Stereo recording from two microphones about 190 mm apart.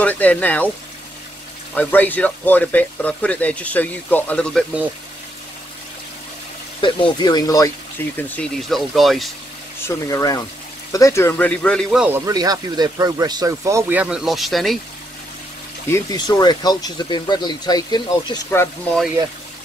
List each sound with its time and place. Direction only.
0.0 s speech: 10° left (ahead or behind)
1.8 s speech: 10° left (ahead or behind)
6.8 s speech: 25° left (ahead or behind); by 9.3 s centre (ahead or behind)
9.8 s speech: 15° left (ahead or behind); by 12.2 s 5° right (ahead or behind)
12.3 s speech: 20° right (ahead or behind); by 14.8 s centre (ahead or behind)
15.9 s speech: 20° left (ahead or behind)